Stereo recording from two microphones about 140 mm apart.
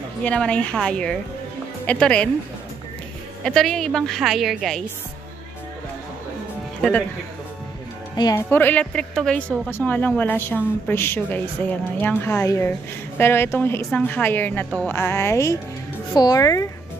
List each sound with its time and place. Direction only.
0.2 s a woman's voice: 10° left (ahead or behind)
3.4 s a woman's voice: 5° left (ahead or behind)
8.2 s speech: 25° left (ahead or behind)
8.5 s a woman's voice: 15° left (ahead or behind)